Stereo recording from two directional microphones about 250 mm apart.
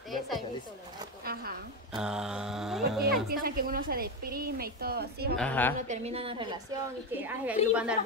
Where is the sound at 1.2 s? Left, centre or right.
Right.